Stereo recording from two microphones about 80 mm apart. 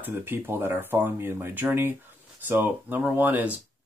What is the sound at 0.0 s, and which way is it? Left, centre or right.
Speech, right.